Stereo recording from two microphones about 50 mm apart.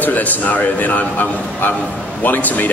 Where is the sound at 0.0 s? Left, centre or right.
Left.